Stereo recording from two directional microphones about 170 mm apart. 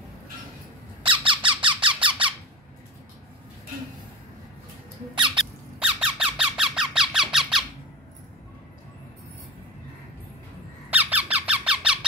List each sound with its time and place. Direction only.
1.0 s squawk: 30° right (ahead or behind)
5.1 s squawk: 30° right (ahead or behind)
5.4 s squeak: 5° right (ahead or behind)
10.9 s squeak: 10° right (ahead or behind)